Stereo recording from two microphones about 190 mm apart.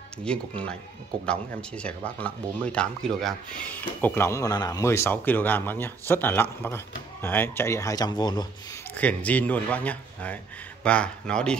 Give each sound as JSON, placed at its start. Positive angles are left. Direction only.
{"t": 0.2, "sound": "speech", "side_deg": 5}
{"t": 8.9, "sound": "speech", "side_deg": 5}